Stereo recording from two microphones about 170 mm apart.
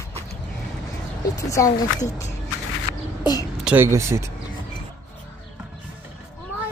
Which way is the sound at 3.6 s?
10° right (ahead or behind).